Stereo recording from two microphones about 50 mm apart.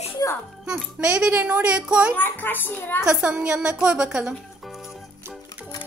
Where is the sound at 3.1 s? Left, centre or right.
Centre.